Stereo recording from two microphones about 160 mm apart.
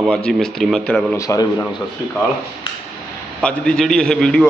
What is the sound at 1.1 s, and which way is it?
Speech, 20° left (ahead or behind).